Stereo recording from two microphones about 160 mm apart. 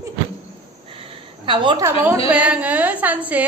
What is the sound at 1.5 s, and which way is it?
Speech, 30° right (ahead or behind).